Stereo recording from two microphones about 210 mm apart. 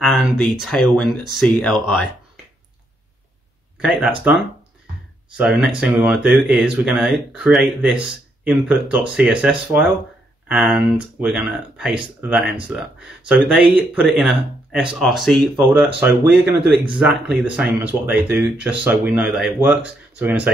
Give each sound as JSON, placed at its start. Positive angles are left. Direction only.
{"t": 0.0, "sound": "speech", "side_deg": 0}
{"t": 3.8, "sound": "speech", "side_deg": 0}
{"t": 5.4, "sound": "speech", "side_deg": -5}
{"t": 16.4, "sound": "speech", "side_deg": -55}
{"t": 16.9, "sound": "speech", "side_deg": 0}